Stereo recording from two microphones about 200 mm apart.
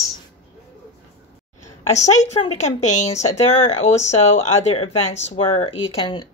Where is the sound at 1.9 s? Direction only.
35° left (ahead or behind).